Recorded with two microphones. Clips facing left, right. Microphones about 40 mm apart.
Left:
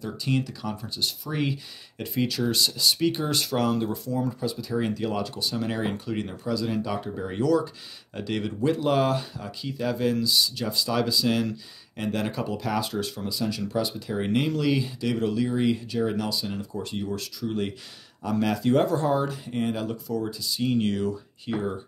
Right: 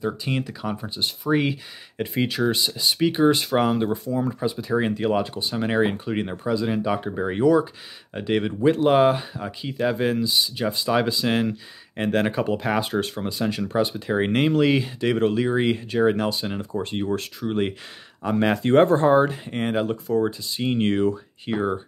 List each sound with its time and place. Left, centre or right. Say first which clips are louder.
0.0 s speech: right 2 dB; right